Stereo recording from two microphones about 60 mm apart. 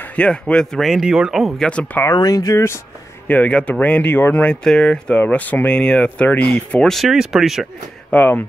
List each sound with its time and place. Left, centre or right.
0.0 s speech: left
0.8 s speech: centre
1.6 s speech: centre
2.0 s speech: left
3.3 s speech: left
5.3 s speech: left
5.7 s speech: centre
7.1 s speech: centre
8.1 s speech: left